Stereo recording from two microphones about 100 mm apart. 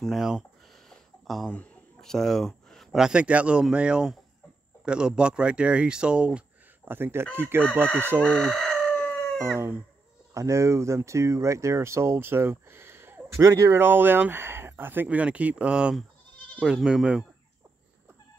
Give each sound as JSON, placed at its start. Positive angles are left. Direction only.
{"t": 0.0, "sound": "a sound", "side_deg": 0}
{"t": 1.5, "sound": "speech", "side_deg": 10}
{"t": 7.8, "sound": "speech", "side_deg": 15}
{"t": 8.5, "sound": "chicken", "side_deg": 5}
{"t": 10.3, "sound": "speech", "side_deg": -30}